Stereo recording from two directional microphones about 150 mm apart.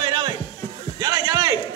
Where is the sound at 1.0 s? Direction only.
25° right (ahead or behind).